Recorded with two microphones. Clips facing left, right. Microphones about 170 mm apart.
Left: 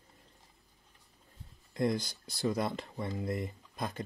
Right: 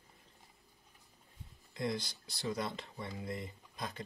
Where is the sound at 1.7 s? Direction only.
50° left (ahead or behind).